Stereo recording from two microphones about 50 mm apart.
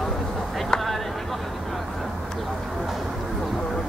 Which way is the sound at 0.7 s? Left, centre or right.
Centre.